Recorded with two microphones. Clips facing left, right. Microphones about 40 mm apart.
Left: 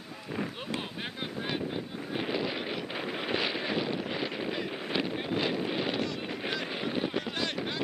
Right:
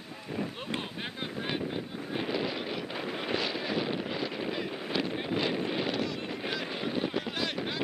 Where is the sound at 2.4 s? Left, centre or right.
Centre.